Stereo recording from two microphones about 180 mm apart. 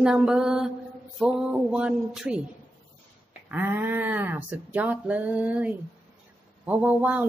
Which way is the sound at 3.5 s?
10° right (ahead or behind).